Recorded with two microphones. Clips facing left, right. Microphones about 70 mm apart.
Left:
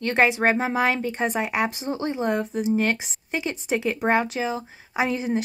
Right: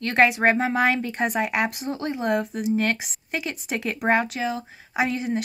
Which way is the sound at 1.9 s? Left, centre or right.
Centre.